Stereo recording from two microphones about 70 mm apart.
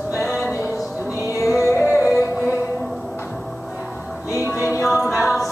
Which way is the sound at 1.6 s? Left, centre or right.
Left.